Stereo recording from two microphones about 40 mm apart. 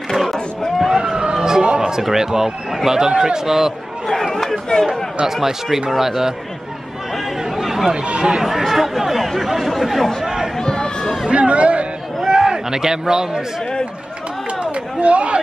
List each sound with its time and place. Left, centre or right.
0.1 s a sound: centre
0.7 s a sound: centre
1.1 s vehicle: right
1.7 s a man's voice: centre
4.1 s chatter: centre
5.2 s a man's voice: centre
7.5 s chatter: centre
7.9 s speech: right
8.5 s speech: centre
10.2 s chatter: centre
10.6 s crowd: centre
11.2 s a man's voice: right
12.3 s a sound: centre
14.6 s a sound: right